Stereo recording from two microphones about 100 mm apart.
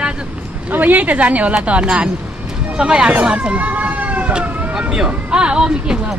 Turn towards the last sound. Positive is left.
turn(degrees=-10)  # may be behind; listen again after turning